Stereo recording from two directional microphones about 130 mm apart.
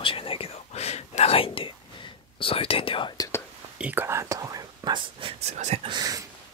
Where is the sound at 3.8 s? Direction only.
15° right (ahead or behind); by 5.3 s 35° right (ahead or behind).